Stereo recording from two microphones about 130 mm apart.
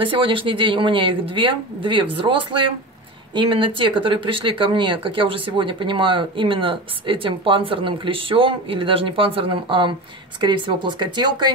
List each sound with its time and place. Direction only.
0.0 s speech: 40° right (ahead or behind)